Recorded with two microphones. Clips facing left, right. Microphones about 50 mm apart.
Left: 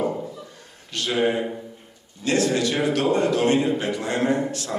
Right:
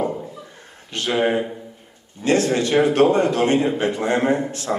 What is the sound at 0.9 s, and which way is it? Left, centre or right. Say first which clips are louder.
Speech: right 2 dB; right.